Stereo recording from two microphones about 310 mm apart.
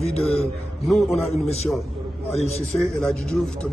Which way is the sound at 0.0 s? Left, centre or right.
Centre.